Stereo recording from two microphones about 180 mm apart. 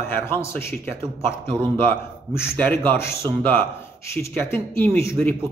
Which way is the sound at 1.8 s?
15° left (ahead or behind).